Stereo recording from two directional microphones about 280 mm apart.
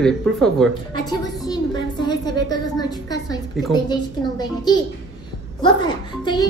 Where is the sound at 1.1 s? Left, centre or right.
Centre.